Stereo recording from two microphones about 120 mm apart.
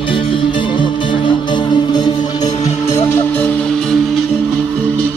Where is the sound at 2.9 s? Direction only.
20° left (ahead or behind).